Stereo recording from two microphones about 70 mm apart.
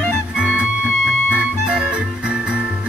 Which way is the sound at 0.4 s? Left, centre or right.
Centre.